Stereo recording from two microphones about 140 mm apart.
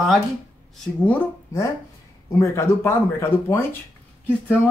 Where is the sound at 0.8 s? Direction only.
10° left (ahead or behind).